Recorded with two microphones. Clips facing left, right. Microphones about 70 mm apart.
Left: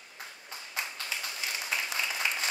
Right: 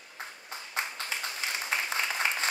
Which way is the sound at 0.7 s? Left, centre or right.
Right.